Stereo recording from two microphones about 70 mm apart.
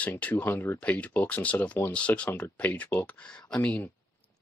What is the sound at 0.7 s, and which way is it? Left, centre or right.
Speech, left.